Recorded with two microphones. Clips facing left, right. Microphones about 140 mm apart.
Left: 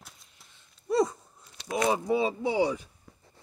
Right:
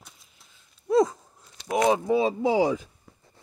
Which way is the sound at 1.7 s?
90° right.